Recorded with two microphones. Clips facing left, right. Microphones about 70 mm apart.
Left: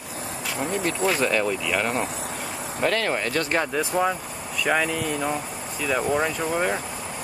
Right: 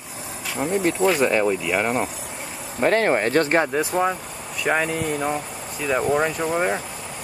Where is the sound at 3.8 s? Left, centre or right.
Centre.